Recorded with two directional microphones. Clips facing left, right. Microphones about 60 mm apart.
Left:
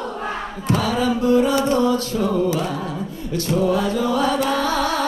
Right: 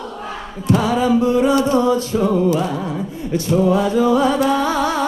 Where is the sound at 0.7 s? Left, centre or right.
Centre.